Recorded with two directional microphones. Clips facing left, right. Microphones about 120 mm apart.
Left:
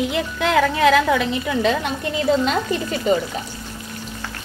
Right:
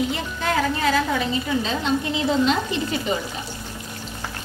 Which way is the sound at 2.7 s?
45° left (ahead or behind).